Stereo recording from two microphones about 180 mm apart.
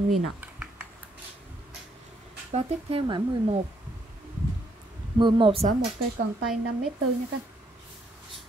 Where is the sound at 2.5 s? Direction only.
30° right (ahead or behind).